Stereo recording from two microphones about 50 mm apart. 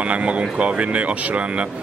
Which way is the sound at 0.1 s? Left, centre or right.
Right.